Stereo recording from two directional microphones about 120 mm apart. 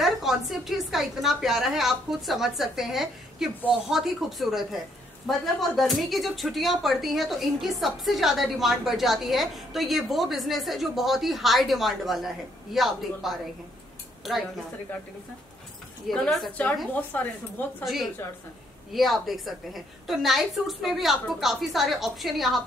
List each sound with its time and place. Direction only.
0.0 s a woman's voice: centre (ahead or behind)
16.1 s a woman's voice: centre (ahead or behind)
16.9 s speech: 15° left (ahead or behind)
17.8 s a woman's voice: centre (ahead or behind)